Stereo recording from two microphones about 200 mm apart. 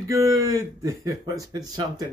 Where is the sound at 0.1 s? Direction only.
15° right (ahead or behind).